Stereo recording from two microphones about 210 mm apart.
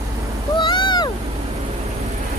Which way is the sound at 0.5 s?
20° left (ahead or behind).